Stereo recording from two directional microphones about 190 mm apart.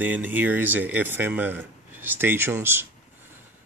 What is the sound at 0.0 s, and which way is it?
Speech, 10° right (ahead or behind).